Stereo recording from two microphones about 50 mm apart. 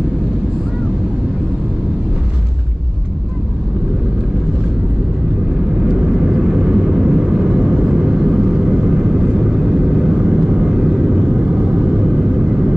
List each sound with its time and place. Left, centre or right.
5.9 s vehicle: centre